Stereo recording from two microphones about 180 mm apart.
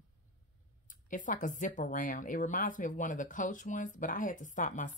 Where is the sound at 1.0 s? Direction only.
45° left (ahead or behind).